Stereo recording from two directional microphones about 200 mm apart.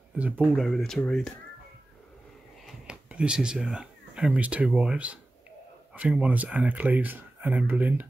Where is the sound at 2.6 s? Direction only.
5° right (ahead or behind).